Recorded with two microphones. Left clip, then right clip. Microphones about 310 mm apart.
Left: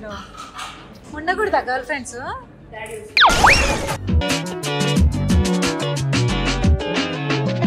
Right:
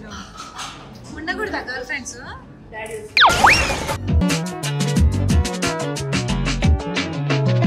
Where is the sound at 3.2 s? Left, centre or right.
Centre.